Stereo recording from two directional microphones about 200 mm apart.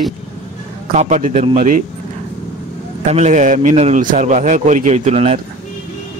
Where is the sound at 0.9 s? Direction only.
35° right (ahead or behind).